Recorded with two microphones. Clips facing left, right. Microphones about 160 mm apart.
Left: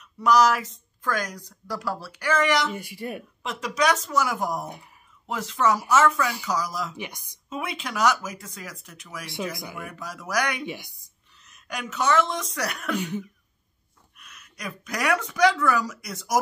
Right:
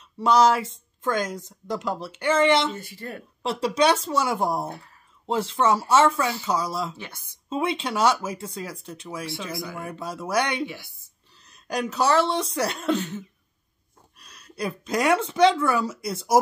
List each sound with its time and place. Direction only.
0.0 s a woman's voice: 30° right (ahead or behind)
2.7 s speech: 15° left (ahead or behind)
3.4 s a woman's voice: 30° right (ahead or behind)
4.6 s speech: 15° left (ahead or behind)
5.2 s a woman's voice: 30° right (ahead or behind)
7.0 s speech: 15° left (ahead or behind)
7.4 s a woman's voice: 30° right (ahead or behind)
10.6 s speech: 20° left (ahead or behind)
11.4 s speech: 35° right (ahead or behind)
14.1 s a woman's voice: 35° right (ahead or behind)